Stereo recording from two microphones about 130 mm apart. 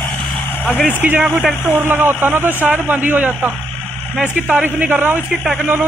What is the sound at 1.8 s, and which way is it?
Speech, 15° right (ahead or behind).